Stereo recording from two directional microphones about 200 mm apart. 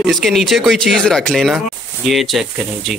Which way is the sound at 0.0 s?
Centre (ahead or behind).